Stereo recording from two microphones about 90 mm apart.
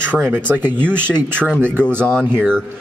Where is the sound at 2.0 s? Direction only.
10° left (ahead or behind).